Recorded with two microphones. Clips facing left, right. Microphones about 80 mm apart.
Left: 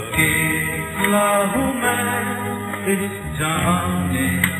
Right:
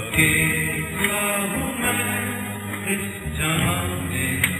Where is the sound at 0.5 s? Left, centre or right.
Left.